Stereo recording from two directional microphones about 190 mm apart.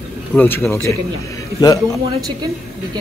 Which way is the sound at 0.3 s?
10° left (ahead or behind).